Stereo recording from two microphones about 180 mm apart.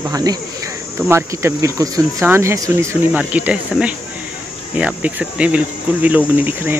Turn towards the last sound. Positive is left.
turn(degrees=-10)  # may be behind; listen again after turning